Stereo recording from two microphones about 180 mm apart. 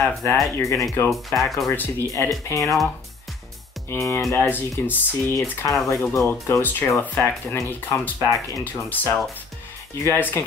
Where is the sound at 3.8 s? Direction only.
15° left (ahead or behind).